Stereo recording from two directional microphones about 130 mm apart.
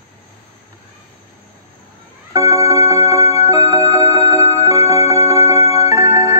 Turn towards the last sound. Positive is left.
turn(degrees=-25)  # may be behind; listen again after turning